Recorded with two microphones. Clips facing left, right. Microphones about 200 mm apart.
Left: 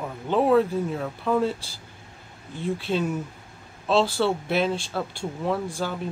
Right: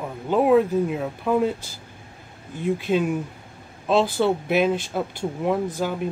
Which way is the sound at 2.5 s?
15° right (ahead or behind).